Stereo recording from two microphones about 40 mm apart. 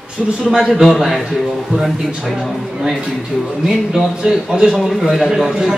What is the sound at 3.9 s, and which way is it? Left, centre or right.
Speech, centre.